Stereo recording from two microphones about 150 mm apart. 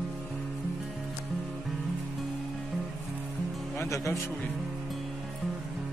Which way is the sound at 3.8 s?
20° left (ahead or behind).